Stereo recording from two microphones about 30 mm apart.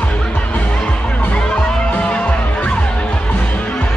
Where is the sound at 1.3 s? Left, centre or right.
Left.